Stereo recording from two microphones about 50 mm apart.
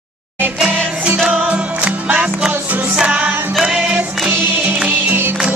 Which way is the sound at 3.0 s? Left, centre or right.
Right.